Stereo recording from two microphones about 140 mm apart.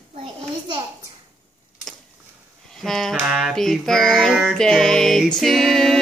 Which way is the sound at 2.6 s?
5° left (ahead or behind).